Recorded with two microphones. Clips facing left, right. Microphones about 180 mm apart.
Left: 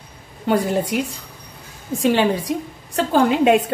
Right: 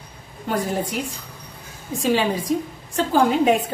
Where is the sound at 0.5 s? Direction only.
75° left (ahead or behind).